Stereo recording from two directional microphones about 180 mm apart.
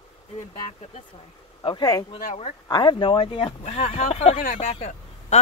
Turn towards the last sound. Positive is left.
turn(degrees=40)  # may be behind; listen again after turning